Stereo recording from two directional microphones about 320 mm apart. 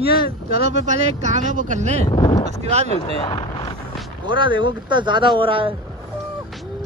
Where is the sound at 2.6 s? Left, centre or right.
Centre.